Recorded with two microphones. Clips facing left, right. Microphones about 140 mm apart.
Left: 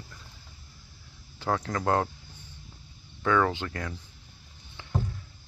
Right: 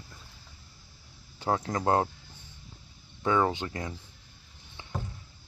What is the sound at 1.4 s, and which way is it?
Speech, 25° right (ahead or behind).